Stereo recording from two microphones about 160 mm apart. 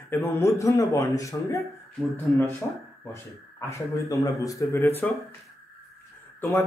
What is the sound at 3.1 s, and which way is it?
Speech, 15° left (ahead or behind).